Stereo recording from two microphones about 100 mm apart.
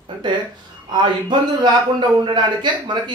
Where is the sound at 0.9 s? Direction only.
50° right (ahead or behind).